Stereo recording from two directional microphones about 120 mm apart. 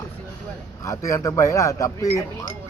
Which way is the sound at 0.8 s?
25° left (ahead or behind).